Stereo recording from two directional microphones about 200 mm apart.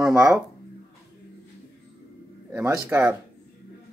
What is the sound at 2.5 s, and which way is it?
Speech, 10° right (ahead or behind).